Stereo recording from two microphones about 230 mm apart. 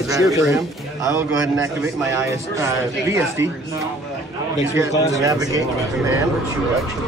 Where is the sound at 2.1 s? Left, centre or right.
Centre.